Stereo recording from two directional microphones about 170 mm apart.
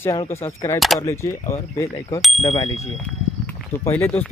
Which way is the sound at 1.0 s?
15° left (ahead or behind).